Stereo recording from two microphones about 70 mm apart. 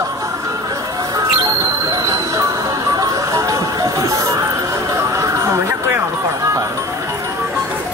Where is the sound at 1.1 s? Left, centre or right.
Right.